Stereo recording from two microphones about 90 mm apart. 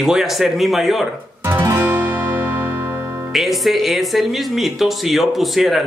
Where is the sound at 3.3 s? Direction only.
Centre (ahead or behind).